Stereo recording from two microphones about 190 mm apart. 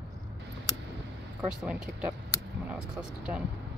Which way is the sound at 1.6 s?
5° right (ahead or behind).